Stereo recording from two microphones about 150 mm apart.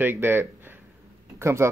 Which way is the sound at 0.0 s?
15° right (ahead or behind).